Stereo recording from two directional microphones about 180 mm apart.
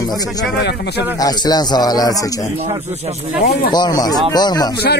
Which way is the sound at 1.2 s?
20° left (ahead or behind).